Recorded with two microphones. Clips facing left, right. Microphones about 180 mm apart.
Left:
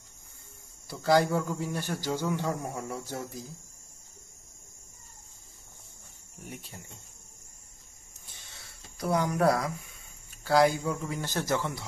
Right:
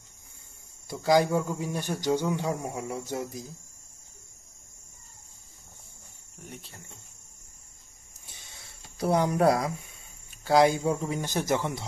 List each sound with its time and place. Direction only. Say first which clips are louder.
0.8 s speech: right 1 dB; 15° right (ahead or behind)
6.5 s cricket: left 2 dB; 15° left (ahead or behind)
8.3 s a sound: right 1 dB; 15° right (ahead or behind)
8.9 s speech: right 3 dB; 30° right (ahead or behind)